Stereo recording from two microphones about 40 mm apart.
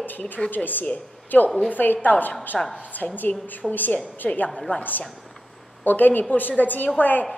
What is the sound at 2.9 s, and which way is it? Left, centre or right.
A woman's voice, left.